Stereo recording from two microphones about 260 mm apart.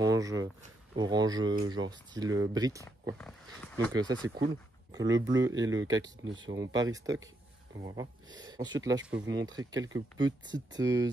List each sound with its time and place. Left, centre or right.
0.0 s speech: centre
3.2 s speech: centre
3.9 s speech: centre